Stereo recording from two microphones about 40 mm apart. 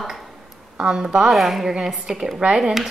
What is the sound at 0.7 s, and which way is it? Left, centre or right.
Speech, right.